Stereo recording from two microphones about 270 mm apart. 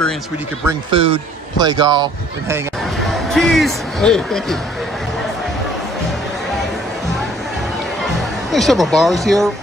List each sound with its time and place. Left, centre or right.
0.7 s a man's voice: centre
3.3 s speech: centre
8.5 s speech: centre